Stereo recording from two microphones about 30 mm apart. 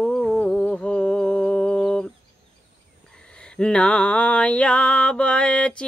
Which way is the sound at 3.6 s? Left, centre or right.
Left.